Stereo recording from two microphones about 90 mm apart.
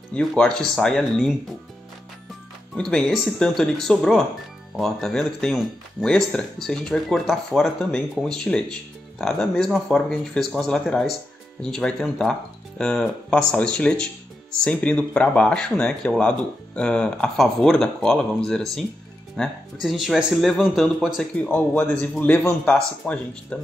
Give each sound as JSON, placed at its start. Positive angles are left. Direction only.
{"t": 0.4, "sound": "speech", "side_deg": 10}
{"t": 2.7, "sound": "speech", "side_deg": 10}
{"t": 21.5, "sound": "speech", "side_deg": 20}